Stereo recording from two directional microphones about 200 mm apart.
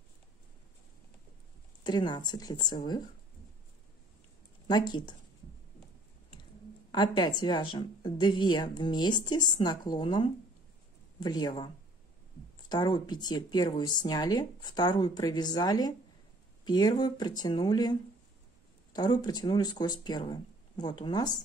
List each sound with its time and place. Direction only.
1.8 s speech: 20° left (ahead or behind)
4.6 s speech: 20° left (ahead or behind)
6.9 s speech: 20° left (ahead or behind)
18.9 s speech: 20° left (ahead or behind)